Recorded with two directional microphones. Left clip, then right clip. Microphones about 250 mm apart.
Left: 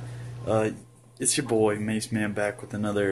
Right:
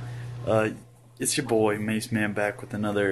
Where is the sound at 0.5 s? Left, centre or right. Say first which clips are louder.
Right 1 dB; centre.